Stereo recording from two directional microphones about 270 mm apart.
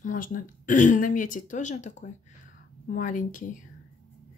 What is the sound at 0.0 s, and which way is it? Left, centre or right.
Speech, left.